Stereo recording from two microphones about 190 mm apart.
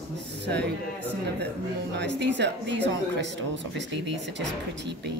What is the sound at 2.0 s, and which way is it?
Speech, 65° right (ahead or behind).